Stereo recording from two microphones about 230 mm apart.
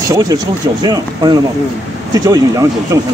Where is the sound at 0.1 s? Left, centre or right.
Centre.